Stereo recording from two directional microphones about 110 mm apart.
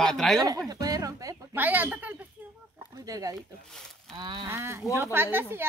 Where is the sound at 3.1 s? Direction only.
35° right (ahead or behind).